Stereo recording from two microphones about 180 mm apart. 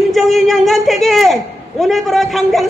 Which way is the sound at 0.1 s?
Centre (ahead or behind).